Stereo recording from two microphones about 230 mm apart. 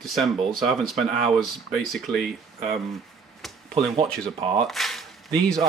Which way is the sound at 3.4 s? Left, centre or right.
Centre.